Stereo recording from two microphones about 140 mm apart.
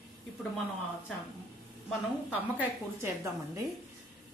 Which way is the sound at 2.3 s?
15° right (ahead or behind).